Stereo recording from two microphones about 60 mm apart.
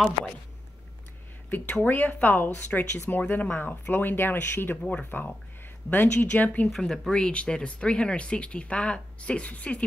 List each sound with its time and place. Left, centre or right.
1.5 s speech: left
5.1 s a sound: left
6.1 s speech: left
6.8 s speech: centre